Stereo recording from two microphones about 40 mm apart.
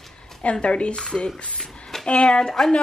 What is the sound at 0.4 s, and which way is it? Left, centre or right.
Speech, left.